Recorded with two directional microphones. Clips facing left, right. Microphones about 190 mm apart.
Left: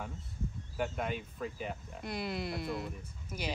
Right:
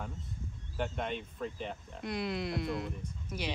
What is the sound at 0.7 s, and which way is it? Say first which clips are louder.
Speech: even; 5° left (ahead or behind).